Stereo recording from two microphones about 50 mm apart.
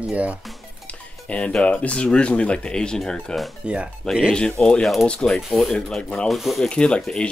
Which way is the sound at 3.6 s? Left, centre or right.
Centre.